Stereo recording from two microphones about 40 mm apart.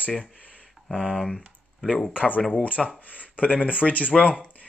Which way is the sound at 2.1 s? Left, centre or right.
Left.